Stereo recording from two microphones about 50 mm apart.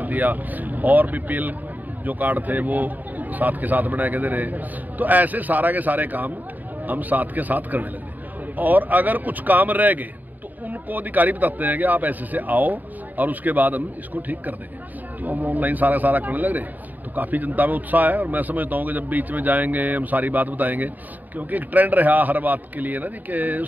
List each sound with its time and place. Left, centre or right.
0.0 s a man's voice: right